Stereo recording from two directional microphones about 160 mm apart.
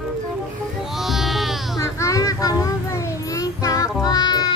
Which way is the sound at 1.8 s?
20° left (ahead or behind).